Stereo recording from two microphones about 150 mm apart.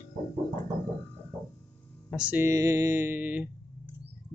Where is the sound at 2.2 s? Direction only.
15° right (ahead or behind).